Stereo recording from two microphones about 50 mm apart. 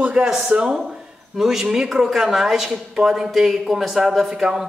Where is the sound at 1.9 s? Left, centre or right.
Centre.